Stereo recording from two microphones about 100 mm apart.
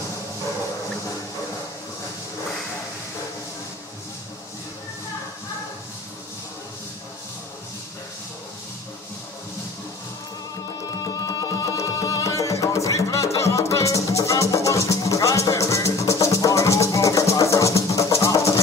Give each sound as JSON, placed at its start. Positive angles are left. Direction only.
{"t": 10.8, "sound": "music", "side_deg": 40}